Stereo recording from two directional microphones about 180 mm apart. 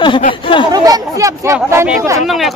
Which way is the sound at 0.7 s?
20° right (ahead or behind).